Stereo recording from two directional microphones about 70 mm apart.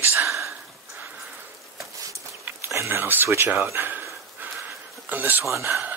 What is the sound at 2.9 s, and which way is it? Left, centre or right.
Speech, right.